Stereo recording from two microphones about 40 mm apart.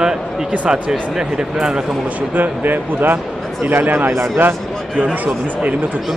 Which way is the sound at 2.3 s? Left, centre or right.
Right.